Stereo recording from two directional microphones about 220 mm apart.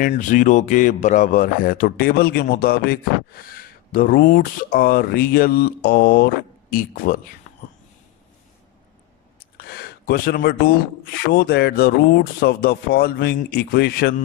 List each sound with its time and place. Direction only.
0.0 s speech: 35° left (ahead or behind)
9.6 s speech: 45° left (ahead or behind)